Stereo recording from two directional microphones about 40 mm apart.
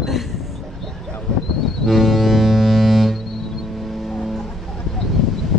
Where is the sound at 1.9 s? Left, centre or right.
Centre.